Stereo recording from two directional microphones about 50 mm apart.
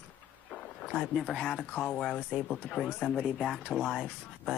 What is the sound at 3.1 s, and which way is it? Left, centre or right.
Speech, centre.